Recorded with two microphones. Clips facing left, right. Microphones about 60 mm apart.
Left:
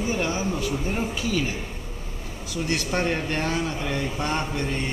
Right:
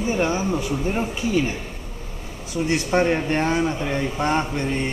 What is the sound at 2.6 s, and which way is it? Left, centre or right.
Speech, right.